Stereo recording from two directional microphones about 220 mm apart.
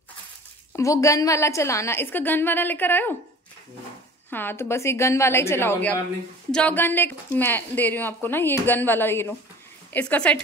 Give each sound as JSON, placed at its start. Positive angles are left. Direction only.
{"t": 0.7, "sound": "a woman's voice", "side_deg": 15}
{"t": 4.3, "sound": "a woman's voice", "side_deg": 10}